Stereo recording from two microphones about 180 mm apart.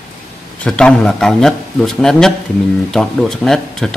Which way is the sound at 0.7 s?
5° left (ahead or behind).